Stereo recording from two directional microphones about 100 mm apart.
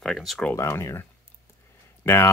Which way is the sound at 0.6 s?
30° left (ahead or behind).